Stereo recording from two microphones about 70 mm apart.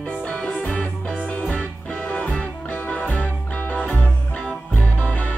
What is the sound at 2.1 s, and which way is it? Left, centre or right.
Music, left.